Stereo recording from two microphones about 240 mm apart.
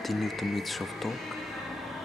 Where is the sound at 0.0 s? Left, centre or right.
Centre.